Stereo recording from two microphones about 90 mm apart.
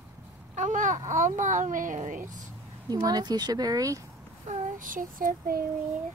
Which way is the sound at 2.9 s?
45° right (ahead or behind).